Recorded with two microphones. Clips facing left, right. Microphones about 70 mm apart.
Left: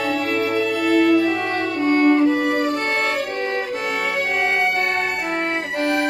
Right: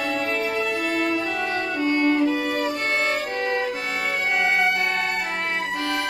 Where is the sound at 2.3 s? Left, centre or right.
Left.